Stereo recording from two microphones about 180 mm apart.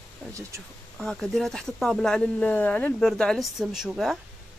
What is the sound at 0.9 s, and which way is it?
Speech, centre (ahead or behind).